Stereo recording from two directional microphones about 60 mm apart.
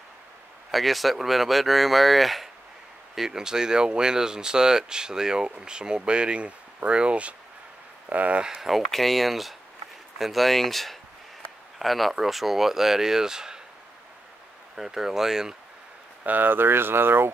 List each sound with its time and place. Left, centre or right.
0.7 s speech: centre; by 8.5 s right
8.5 s speech: centre
14.8 s speech: centre
16.3 s speech: right